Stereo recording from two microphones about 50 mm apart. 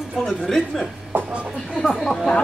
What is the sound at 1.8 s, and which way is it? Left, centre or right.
Speech, centre.